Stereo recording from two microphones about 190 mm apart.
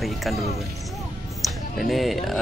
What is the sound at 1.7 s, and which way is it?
Speech, centre (ahead or behind).